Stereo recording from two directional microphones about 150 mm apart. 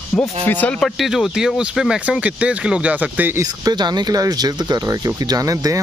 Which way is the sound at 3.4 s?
25° right (ahead or behind).